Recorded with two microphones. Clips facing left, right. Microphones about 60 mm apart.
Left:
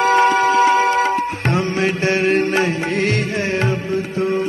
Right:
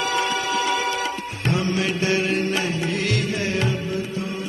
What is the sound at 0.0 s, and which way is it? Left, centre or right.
Music, left.